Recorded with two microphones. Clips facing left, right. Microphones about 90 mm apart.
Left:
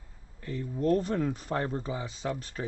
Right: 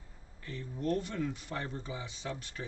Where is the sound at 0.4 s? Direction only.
40° left (ahead or behind).